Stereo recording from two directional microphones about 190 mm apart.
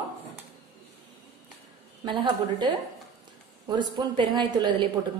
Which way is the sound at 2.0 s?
25° right (ahead or behind).